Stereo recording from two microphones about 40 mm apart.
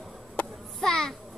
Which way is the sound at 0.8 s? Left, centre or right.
Centre.